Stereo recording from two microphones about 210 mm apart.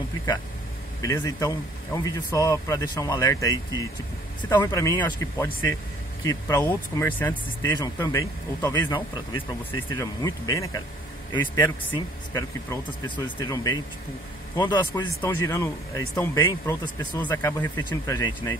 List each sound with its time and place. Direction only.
1.0 s speech: 20° left (ahead or behind)